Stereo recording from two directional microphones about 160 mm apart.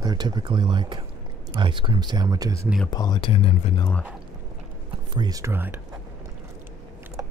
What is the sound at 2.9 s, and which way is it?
Speech, 25° left (ahead or behind).